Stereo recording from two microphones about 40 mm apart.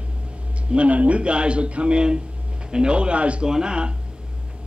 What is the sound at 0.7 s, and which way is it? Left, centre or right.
Speech, right.